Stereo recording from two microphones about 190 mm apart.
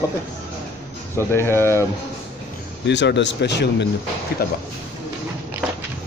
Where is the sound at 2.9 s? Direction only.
65° left (ahead or behind).